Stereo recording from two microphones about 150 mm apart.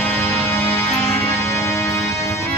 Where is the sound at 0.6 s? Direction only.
15° left (ahead or behind).